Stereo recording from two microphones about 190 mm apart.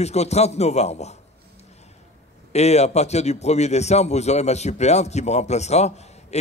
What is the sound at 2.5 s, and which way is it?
A man's voice, 35° left (ahead or behind).